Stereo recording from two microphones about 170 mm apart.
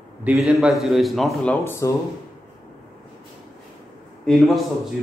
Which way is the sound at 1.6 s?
15° left (ahead or behind).